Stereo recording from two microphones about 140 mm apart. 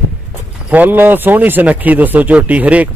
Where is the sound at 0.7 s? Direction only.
10° right (ahead or behind).